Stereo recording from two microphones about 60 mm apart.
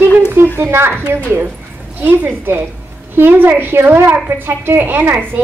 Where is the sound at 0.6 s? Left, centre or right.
Right.